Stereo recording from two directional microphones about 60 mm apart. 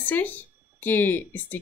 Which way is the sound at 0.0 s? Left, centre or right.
Left.